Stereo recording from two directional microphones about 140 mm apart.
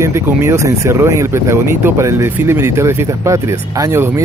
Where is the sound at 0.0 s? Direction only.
20° right (ahead or behind).